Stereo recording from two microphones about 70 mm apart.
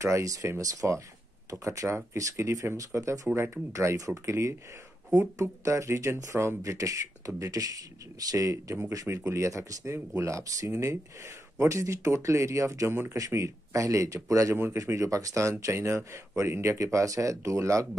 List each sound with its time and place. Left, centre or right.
0.0 s speech: right
12.9 s speech: right
13.2 s speech: right